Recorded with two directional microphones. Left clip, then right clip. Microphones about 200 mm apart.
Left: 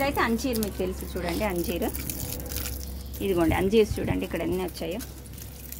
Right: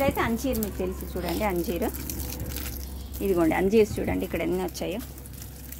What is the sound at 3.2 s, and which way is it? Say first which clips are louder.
Speech: right 1 dB; 10° right (ahead or behind).